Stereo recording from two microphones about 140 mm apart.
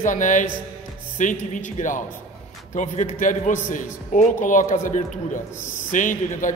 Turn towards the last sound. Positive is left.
turn(degrees=70)  # may be behind; listen again after turning